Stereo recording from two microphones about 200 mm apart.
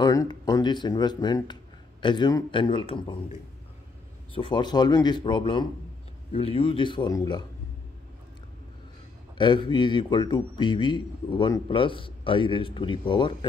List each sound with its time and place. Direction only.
0.0 s a man's voice: 20° left (ahead or behind)
9.4 s a man's voice: 25° left (ahead or behind)